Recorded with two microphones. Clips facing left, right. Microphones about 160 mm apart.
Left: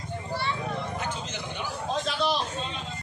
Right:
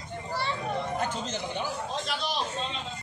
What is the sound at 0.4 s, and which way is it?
Children playing, 40° right (ahead or behind).